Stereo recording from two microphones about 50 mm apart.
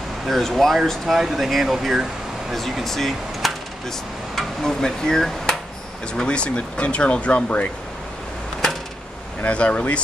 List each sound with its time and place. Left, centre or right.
0.3 s speech: centre
4.4 s hammer: centre
6.1 s speech: centre
9.4 s speech: left